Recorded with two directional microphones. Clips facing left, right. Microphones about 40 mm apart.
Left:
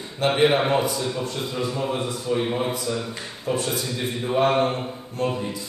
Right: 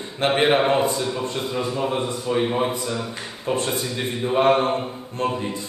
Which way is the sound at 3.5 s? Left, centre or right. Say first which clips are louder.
Right 2 dB; right.